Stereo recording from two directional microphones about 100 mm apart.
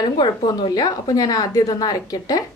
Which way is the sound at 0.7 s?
40° left (ahead or behind).